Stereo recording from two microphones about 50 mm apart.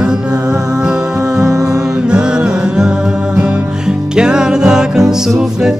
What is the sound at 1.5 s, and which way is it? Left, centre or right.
Music, right.